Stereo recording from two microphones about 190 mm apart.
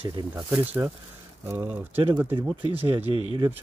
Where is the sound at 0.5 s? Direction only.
10° right (ahead or behind).